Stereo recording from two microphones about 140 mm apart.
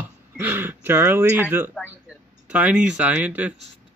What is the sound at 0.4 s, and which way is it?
Speech, 15° right (ahead or behind).